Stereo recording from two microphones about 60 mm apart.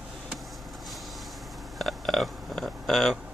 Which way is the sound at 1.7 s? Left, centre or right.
Centre.